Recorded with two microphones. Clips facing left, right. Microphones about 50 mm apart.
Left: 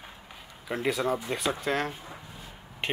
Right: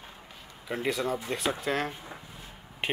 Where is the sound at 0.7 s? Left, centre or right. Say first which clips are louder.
Left 2 dB; centre.